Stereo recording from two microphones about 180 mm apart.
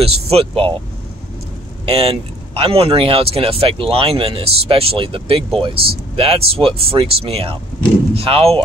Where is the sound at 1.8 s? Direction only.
30° right (ahead or behind).